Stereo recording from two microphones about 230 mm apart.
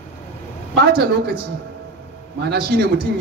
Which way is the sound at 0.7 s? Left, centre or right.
Right.